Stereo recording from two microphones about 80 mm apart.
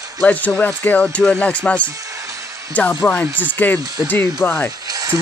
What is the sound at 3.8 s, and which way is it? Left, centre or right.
Speech, right.